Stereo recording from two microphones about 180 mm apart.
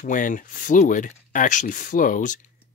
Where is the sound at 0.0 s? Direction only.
45° left (ahead or behind).